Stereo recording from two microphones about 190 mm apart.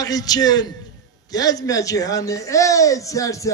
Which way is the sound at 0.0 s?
20° left (ahead or behind).